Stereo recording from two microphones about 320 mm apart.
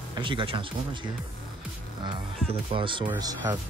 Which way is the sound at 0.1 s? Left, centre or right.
Centre.